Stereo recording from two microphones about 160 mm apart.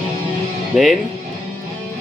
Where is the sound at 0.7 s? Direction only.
Centre (ahead or behind).